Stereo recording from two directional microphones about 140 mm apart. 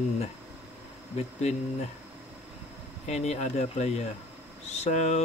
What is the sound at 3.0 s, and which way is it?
Speech, 50° left (ahead or behind).